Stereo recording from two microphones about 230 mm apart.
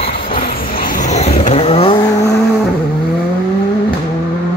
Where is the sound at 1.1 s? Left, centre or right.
Left.